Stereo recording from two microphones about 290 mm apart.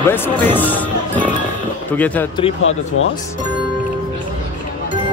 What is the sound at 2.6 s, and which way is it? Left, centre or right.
Speech, left.